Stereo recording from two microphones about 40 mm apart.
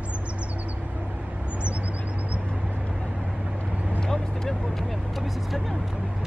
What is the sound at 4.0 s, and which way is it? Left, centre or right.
Vehicle, centre.